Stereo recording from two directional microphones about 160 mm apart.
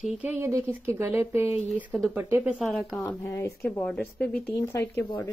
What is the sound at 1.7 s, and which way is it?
Speech, 5° right (ahead or behind).